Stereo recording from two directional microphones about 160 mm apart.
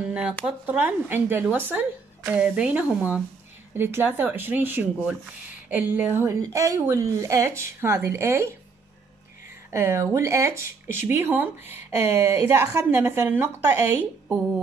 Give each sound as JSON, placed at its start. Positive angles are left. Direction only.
{"t": 0.0, "sound": "a woman's voice", "side_deg": -5}
{"t": 9.7, "sound": "a woman's voice", "side_deg": -15}